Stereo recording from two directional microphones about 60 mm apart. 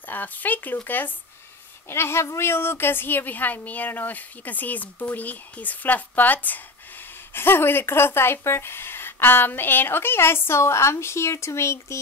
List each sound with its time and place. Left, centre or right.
0.0 s a woman's voice: left
1.9 s a woman's voice: left